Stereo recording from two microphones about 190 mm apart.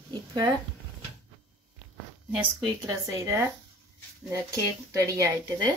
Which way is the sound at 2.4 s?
15° right (ahead or behind).